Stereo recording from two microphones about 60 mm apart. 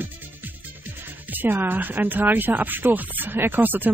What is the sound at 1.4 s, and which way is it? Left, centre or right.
Speech, right.